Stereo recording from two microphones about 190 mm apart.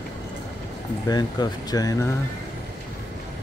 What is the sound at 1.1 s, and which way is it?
Speech, 20° left (ahead or behind).